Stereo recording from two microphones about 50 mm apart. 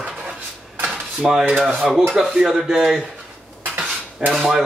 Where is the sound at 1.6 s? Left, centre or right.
Right.